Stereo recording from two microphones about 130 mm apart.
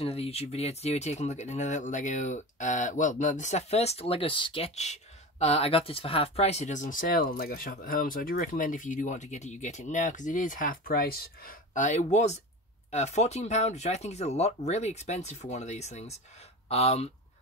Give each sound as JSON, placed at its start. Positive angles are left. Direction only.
{"t": 0.0, "sound": "speech", "side_deg": 50}
{"t": 4.7, "sound": "speech", "side_deg": 60}
{"t": 11.4, "sound": "speech", "side_deg": 75}